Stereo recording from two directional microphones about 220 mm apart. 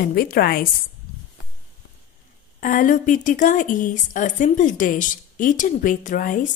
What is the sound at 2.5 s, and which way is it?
A woman's voice, 35° left (ahead or behind).